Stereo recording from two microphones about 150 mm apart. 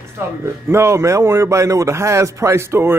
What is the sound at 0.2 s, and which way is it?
A man's voice, 15° right (ahead or behind).